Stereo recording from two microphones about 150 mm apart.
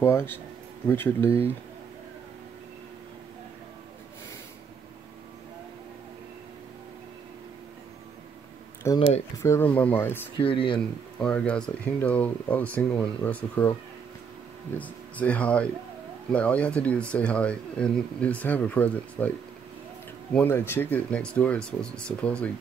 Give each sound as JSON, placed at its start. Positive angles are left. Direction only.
{"t": 0.0, "sound": "speech", "side_deg": 15}
{"t": 8.8, "sound": "speech", "side_deg": 20}
{"t": 10.4, "sound": "speech", "side_deg": 35}
{"t": 11.1, "sound": "speech", "side_deg": 5}
{"t": 14.8, "sound": "speech", "side_deg": 10}
{"t": 20.3, "sound": "speech", "side_deg": 15}